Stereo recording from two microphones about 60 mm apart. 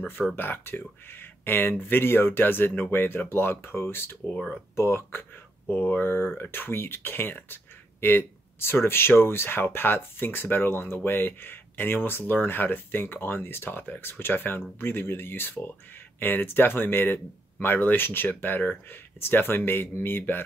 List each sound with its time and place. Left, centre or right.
0.4 s speech: left
5.7 s speech: left